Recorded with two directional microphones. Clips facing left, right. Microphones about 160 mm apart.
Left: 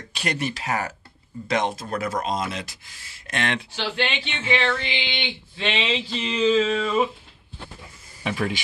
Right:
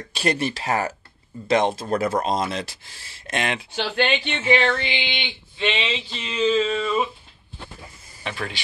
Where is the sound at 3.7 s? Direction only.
45° right (ahead or behind).